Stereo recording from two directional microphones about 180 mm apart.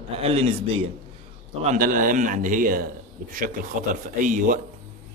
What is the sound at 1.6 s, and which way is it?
A man's voice, 45° right (ahead or behind).